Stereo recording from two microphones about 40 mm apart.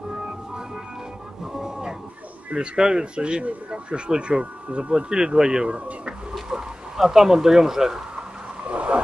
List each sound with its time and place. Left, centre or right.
0.1 s music: centre
1.4 s vehicle: centre
2.5 s speech: right
6.5 s speech: centre
8.6 s a sound: right